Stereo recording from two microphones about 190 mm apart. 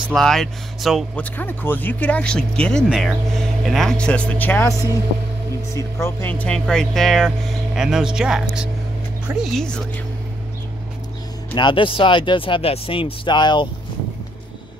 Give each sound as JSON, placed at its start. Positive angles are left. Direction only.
{"t": 0.1, "sound": "speech", "side_deg": 0}
{"t": 6.0, "sound": "speech", "side_deg": 10}
{"t": 11.5, "sound": "speech", "side_deg": 25}